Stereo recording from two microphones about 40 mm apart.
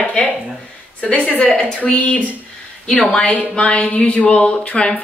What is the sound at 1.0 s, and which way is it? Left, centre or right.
A woman's voice, left.